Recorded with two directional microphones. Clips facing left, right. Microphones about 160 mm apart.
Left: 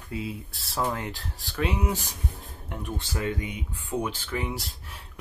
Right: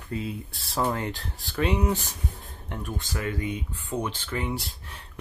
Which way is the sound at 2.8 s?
25° left (ahead or behind).